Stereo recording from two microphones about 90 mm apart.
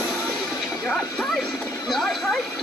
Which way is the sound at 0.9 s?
Centre (ahead or behind).